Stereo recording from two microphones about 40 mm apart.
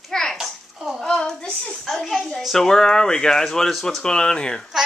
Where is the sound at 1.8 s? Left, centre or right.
Centre.